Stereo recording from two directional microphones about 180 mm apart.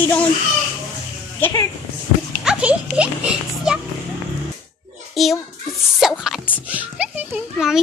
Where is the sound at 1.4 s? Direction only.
20° left (ahead or behind).